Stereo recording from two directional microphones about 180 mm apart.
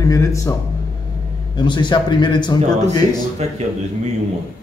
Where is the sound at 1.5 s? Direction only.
25° left (ahead or behind).